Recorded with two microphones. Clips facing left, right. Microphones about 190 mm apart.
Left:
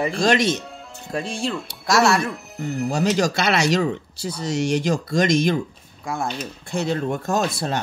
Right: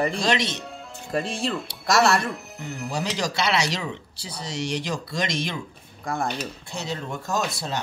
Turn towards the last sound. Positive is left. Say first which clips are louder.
# left 5 dB
turn(degrees=55)  # may be behind; listen again after turning